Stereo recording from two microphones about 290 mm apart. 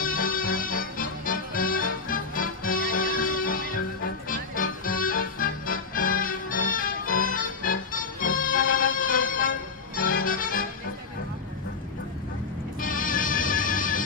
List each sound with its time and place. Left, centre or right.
0.0 s music: left
12.8 s music: left